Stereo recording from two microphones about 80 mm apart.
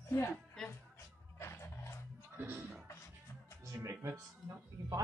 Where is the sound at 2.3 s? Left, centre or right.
Right.